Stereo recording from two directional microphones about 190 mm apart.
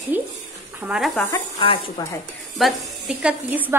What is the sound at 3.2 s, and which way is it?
Speech, 10° right (ahead or behind).